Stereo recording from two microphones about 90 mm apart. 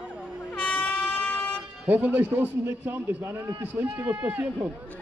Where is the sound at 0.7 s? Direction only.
15° left (ahead or behind).